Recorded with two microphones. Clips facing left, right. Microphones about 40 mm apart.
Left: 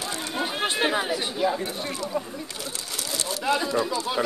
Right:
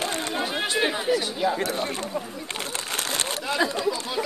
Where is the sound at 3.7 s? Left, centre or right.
Left.